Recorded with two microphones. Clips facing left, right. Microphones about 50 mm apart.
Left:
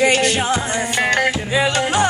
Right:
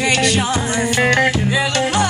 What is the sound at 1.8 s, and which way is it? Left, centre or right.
Music, left.